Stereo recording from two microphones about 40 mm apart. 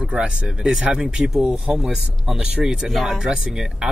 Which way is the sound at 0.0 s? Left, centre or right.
Right.